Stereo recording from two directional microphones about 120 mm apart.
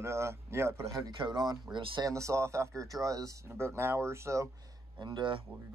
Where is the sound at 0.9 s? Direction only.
40° right (ahead or behind).